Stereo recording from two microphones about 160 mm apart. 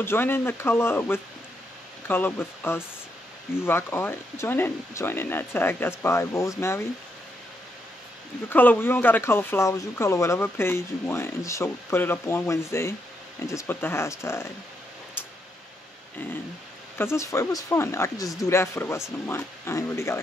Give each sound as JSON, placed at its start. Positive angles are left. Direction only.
{"t": 0.0, "sound": "speech", "side_deg": 15}
{"t": 8.5, "sound": "speech", "side_deg": 10}
{"t": 17.0, "sound": "speech", "side_deg": 15}